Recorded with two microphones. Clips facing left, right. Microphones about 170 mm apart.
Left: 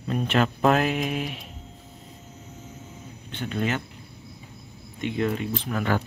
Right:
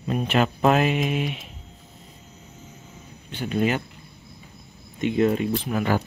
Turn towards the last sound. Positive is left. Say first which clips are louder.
# right 2 dB
turn(degrees=-10)  # may be behind; listen again after turning